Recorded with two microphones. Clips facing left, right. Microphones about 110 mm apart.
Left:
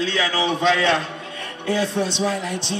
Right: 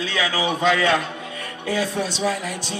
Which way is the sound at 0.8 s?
25° left (ahead or behind).